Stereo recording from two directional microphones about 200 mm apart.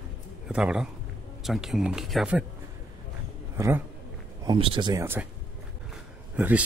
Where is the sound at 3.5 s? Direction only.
15° right (ahead or behind).